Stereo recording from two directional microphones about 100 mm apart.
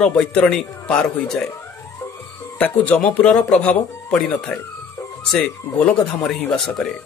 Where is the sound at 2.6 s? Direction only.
15° left (ahead or behind).